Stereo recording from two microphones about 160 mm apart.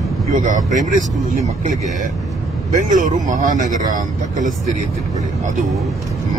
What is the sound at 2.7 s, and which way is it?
Speech, 55° right (ahead or behind).